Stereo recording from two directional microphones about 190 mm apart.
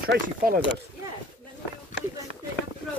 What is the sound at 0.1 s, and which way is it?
Speech, 60° right (ahead or behind).